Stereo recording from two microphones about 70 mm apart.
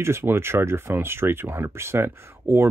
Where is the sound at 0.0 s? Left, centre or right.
Right.